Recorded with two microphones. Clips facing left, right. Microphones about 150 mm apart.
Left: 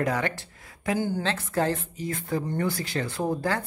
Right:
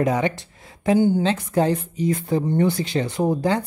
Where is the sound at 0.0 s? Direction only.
20° right (ahead or behind).